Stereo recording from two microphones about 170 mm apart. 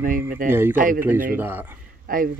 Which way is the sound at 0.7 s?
50° right (ahead or behind).